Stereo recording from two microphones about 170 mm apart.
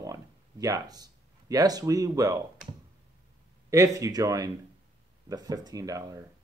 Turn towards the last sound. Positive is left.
turn(degrees=-20)  # may be behind; listen again after turning